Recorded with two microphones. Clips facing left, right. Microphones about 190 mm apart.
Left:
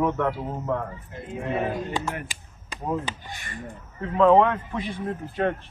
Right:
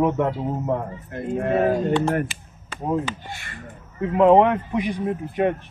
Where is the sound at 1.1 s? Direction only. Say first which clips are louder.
Right 8 dB; 55° right (ahead or behind).